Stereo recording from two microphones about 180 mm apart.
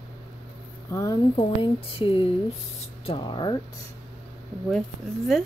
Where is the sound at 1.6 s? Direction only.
30° left (ahead or behind).